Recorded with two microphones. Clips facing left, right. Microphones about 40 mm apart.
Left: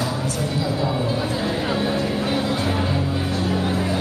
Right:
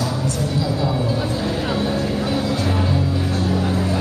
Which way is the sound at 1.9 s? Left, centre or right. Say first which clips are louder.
Right 1 dB; left.